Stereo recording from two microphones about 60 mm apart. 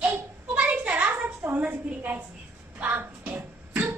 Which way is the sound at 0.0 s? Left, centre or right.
Right.